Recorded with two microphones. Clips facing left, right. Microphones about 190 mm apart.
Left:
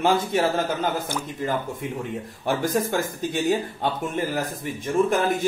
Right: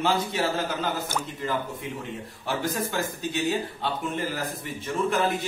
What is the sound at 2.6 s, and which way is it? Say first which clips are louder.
Speech: left 4 dB; 50° left (ahead or behind).